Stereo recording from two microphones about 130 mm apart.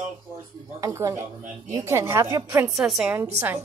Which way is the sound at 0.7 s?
25° right (ahead or behind).